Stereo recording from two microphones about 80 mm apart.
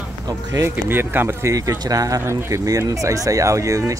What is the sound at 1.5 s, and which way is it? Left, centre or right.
Speech, right.